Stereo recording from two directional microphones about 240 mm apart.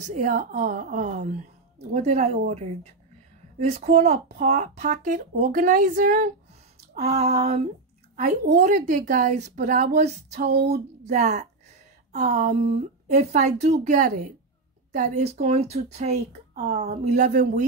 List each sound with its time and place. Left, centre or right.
0.0 s speech: right
10.4 s speech: right
12.1 s speech: right